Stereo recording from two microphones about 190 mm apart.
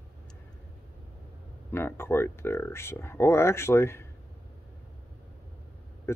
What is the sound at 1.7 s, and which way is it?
Speech, 15° left (ahead or behind).